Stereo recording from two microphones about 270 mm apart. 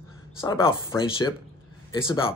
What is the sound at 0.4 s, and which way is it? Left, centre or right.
Speech, centre.